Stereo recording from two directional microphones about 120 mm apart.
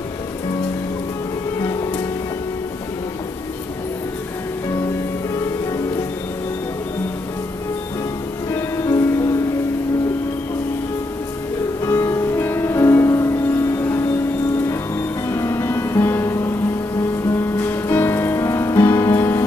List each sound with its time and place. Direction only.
1.6 s music: 30° left (ahead or behind)
8.5 s music: 25° left (ahead or behind)
11.8 s music: 25° left (ahead or behind)